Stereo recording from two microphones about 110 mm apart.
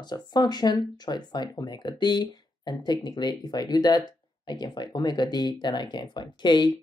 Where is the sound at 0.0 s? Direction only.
40° left (ahead or behind).